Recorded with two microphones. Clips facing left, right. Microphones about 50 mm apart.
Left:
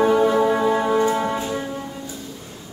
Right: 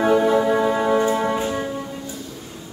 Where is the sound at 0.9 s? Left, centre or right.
Right.